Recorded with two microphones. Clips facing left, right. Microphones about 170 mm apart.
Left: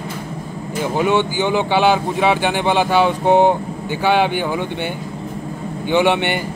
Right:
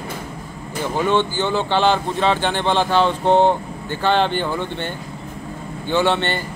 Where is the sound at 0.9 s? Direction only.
10° left (ahead or behind).